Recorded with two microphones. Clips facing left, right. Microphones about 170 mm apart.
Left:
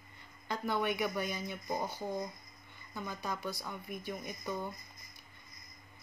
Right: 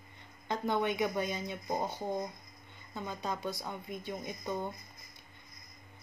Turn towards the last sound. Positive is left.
turn(degrees=-25)  # may be behind; listen again after turning